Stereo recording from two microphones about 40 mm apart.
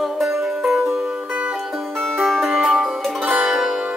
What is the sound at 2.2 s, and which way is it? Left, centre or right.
Music, centre.